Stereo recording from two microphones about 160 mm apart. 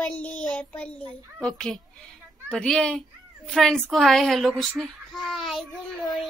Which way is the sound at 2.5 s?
5° left (ahead or behind).